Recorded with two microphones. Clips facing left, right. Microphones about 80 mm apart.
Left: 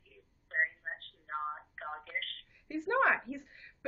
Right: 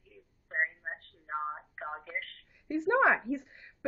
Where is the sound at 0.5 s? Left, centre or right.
Centre.